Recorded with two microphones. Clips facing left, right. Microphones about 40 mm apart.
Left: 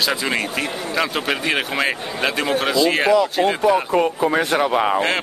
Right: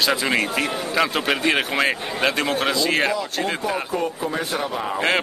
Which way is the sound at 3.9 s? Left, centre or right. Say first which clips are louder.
Left 7 dB; left.